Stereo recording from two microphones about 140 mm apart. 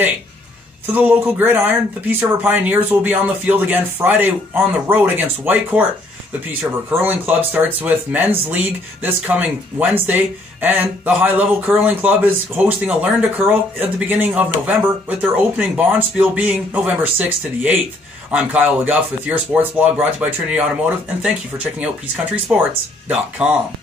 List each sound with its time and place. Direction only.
0.8 s speech: 15° right (ahead or behind)
15.2 s speech: 10° right (ahead or behind)